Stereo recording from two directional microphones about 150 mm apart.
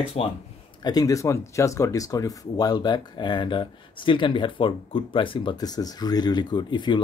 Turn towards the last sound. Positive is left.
turn(degrees=30)  # may be behind; listen again after turning